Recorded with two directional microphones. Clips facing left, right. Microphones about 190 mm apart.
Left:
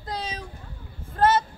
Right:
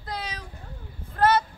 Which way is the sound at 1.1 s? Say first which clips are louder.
Left 1 dB; 25° left (ahead or behind).